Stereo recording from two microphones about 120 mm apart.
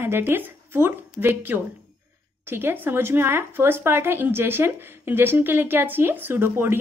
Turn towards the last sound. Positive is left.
turn(degrees=-20)  # may be behind; listen again after turning